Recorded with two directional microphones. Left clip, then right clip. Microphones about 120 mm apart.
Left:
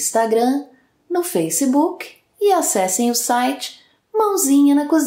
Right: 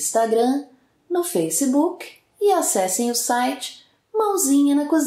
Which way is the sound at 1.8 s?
20° left (ahead or behind).